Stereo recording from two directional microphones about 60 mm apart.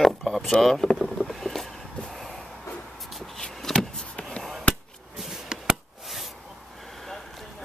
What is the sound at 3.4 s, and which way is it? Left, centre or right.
Vehicle, centre.